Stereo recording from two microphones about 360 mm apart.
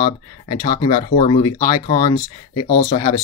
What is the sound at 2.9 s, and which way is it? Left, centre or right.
Speech, centre.